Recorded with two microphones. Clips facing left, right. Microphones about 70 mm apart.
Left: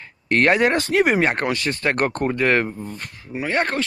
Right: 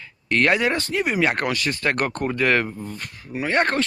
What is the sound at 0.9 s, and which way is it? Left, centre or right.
Speech, left.